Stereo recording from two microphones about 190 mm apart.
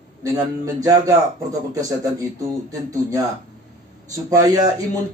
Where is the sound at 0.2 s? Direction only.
15° right (ahead or behind).